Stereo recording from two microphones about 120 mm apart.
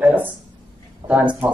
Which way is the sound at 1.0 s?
35° right (ahead or behind).